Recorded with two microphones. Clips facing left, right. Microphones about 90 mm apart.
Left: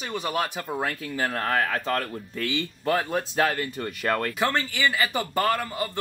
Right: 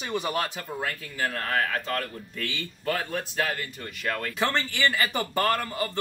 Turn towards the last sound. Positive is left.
turn(degrees=5)  # may be behind; listen again after turning